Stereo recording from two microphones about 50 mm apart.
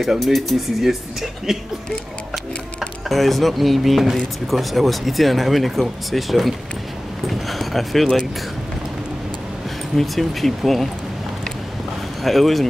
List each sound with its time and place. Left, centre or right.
0.0 s speech: centre
3.1 s speech: centre
7.2 s a sound: centre
9.9 s speech: centre
12.2 s speech: centre